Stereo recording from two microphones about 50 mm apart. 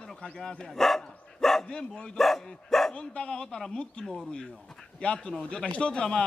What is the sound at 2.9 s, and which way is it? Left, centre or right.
A man's voice, centre.